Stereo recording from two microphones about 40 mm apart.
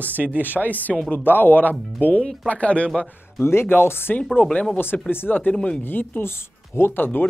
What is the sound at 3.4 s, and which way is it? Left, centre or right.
Speech, left.